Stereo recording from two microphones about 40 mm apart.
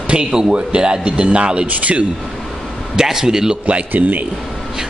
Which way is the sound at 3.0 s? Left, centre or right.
Centre.